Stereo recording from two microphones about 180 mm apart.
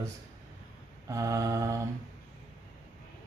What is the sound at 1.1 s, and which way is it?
Mantra, 15° right (ahead or behind).